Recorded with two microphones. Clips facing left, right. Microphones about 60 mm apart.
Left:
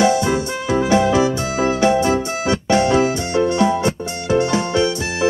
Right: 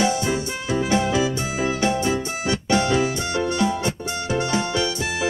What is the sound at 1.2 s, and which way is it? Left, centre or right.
Music, left.